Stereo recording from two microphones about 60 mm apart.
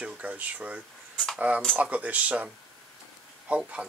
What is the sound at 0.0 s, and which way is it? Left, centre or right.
Speech, right.